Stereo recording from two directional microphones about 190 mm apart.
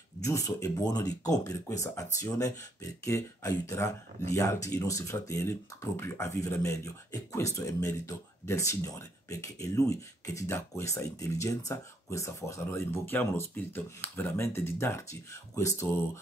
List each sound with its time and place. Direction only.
0.2 s speech: 15° left (ahead or behind)